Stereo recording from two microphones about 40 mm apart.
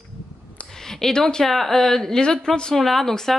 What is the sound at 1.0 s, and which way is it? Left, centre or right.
Speech, centre.